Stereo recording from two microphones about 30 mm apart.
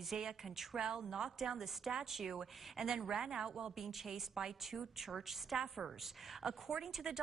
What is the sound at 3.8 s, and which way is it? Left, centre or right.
A woman's voice, centre.